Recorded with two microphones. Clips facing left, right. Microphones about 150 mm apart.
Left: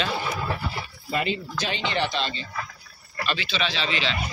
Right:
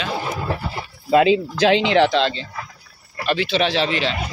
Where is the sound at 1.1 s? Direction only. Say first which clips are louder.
Right 13 dB; 90° right.